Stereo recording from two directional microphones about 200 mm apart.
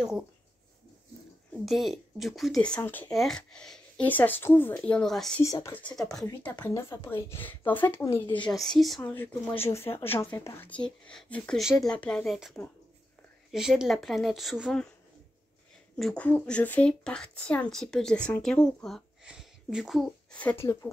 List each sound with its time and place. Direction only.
1.7 s speech: centre (ahead or behind)
5.4 s a woman's voice: 15° left (ahead or behind)
8.6 s a woman's voice: centre (ahead or behind)
16.0 s speech: 5° left (ahead or behind)